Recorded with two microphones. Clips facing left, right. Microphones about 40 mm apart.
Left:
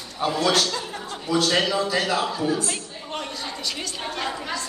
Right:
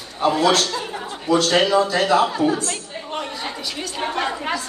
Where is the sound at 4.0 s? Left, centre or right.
Right.